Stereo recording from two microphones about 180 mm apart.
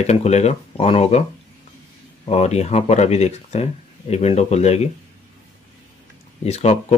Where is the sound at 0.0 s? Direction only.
35° left (ahead or behind).